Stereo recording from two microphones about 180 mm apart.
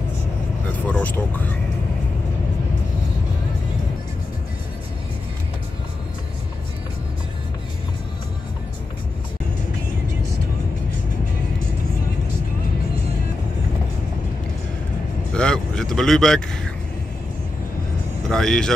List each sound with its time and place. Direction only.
0.8 s speech: 10° left (ahead or behind)
15.3 s vehicle: 5° left (ahead or behind)
18.3 s speech: 5° left (ahead or behind)